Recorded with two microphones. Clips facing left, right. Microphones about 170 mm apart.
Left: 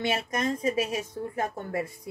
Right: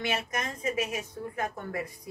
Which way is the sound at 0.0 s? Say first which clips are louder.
Left 4 dB; 30° left (ahead or behind).